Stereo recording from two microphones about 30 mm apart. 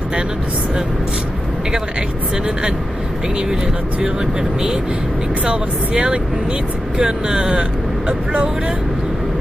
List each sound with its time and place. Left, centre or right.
5.4 s speech: right